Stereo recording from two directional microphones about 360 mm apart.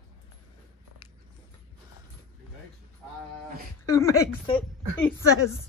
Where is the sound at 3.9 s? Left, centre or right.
Centre.